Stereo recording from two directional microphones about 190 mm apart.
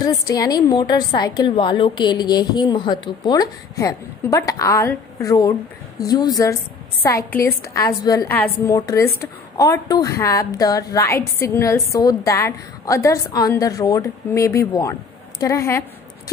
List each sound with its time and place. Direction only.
0.0 s a woman's voice: 20° left (ahead or behind)